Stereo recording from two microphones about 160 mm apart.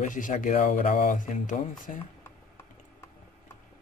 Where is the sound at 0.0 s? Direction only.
55° left (ahead or behind).